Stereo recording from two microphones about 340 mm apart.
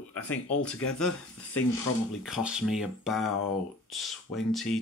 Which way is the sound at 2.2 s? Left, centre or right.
Centre.